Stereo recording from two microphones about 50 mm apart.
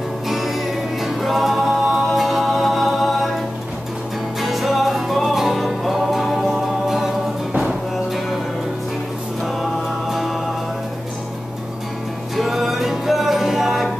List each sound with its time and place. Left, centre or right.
1.0 s music: centre
4.4 s music: centre
9.4 s music: centre
12.4 s music: centre